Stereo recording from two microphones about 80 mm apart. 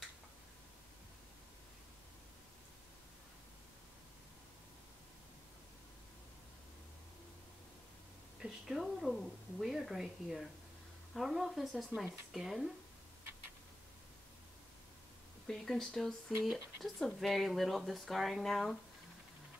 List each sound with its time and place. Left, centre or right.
8.4 s speech: centre
15.4 s speech: centre
16.4 s speech: centre
16.8 s speech: centre